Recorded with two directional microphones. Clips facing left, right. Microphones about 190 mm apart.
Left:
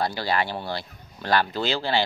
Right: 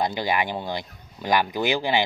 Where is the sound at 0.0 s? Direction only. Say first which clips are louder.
Right 1 dB; 15° right (ahead or behind).